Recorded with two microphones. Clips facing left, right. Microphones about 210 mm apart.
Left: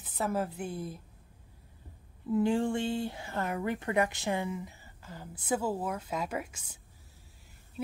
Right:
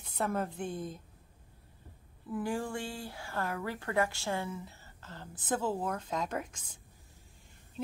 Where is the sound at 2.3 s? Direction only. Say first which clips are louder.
Left 7 dB; 25° left (ahead or behind).